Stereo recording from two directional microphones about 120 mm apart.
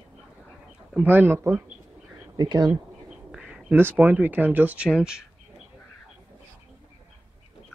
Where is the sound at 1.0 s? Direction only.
15° right (ahead or behind).